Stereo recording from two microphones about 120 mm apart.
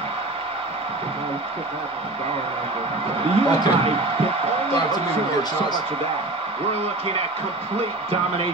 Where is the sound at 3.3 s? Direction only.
50° right (ahead or behind).